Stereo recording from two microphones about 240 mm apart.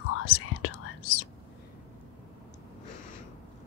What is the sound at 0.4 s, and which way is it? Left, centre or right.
Whispering, left.